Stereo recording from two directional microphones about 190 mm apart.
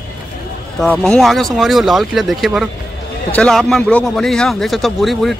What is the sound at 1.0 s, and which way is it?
A man's voice, centre (ahead or behind).